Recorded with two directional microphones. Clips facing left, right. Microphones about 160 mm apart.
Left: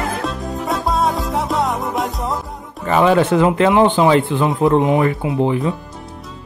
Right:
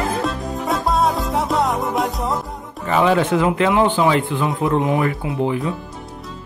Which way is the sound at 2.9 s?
40° left (ahead or behind).